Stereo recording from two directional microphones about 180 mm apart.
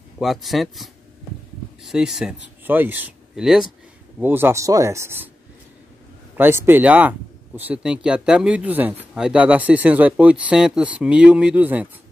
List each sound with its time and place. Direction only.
0.2 s speech: centre (ahead or behind)
6.3 s speech: 10° right (ahead or behind)